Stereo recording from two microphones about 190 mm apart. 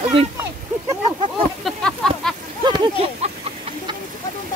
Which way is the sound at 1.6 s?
Centre (ahead or behind).